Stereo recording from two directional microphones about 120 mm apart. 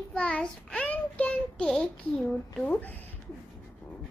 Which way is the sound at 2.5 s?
10° left (ahead or behind).